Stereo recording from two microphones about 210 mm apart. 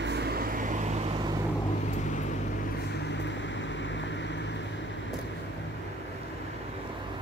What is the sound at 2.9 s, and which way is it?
Vehicle, 55° left (ahead or behind).